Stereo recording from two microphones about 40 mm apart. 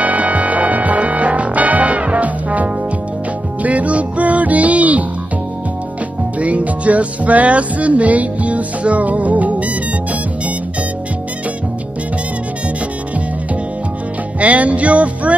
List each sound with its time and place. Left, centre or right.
0.0 s music: right
6.4 s music: right
14.4 s music: right